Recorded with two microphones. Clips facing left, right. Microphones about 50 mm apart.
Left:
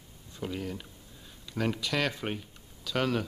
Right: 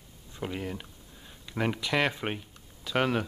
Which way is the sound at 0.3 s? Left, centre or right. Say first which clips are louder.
Right 1 dB; right.